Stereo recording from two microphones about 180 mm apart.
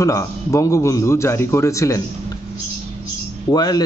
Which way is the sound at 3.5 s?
20° left (ahead or behind).